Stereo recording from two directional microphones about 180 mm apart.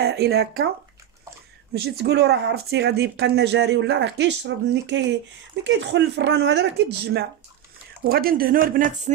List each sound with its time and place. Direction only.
0.0 s speech: 65° right (ahead or behind)
1.7 s speech: 65° right (ahead or behind)
8.1 s speech: 55° right (ahead or behind)